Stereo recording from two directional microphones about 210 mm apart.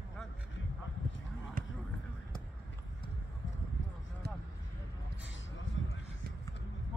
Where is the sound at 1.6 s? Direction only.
40° right (ahead or behind).